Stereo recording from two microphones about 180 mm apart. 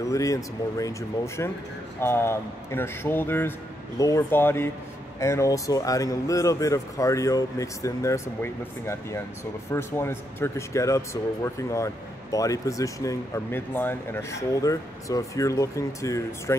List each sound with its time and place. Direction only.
0.0 s speech: 20° left (ahead or behind)